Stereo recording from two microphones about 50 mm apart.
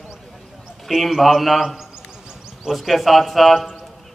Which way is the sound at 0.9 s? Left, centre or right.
Centre.